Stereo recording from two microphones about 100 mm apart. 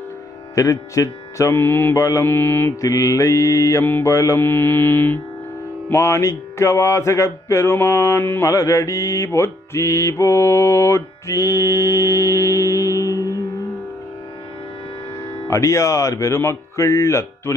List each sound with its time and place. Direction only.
0.6 s music: 30° left (ahead or behind)
3.8 s speech: 20° left (ahead or behind)
4.1 s speech: 30° left (ahead or behind)
5.9 s music: 30° left (ahead or behind)
15.4 s speech: 30° left (ahead or behind)